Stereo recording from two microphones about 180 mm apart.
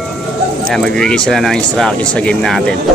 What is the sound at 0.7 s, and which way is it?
Speech, 5° left (ahead or behind).